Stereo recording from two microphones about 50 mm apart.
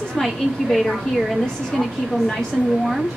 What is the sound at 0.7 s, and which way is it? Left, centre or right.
A woman's voice, centre.